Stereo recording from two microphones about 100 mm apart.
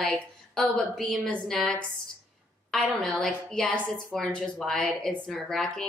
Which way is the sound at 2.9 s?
10° left (ahead or behind).